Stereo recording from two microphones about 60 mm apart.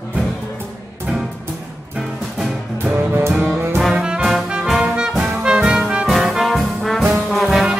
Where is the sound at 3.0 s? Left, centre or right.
Right.